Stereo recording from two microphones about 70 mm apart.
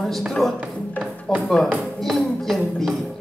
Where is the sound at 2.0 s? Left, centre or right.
Centre.